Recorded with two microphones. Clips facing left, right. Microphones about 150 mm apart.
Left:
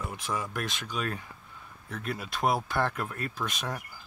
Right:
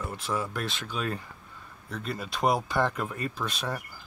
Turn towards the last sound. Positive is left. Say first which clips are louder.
# right 2 dB
turn(degrees=-5)  # may be behind; listen again after turning